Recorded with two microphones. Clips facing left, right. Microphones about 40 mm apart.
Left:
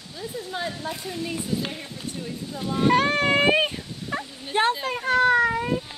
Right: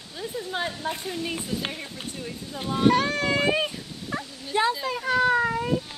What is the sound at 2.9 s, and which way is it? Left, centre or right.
Speech, left.